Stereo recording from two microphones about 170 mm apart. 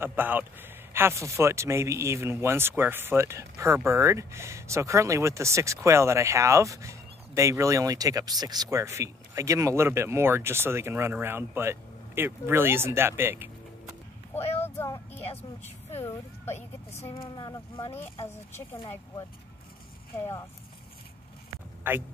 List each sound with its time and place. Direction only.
0.0 s speech: 10° right (ahead or behind)
14.3 s vehicle: 10° left (ahead or behind)
15.9 s a woman's voice: 15° left (ahead or behind)
17.1 s speech: 30° left (ahead or behind)
21.8 s speech: 10° right (ahead or behind)